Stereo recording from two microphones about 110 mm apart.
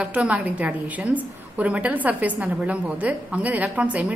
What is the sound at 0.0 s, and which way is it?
A woman's voice, 10° right (ahead or behind).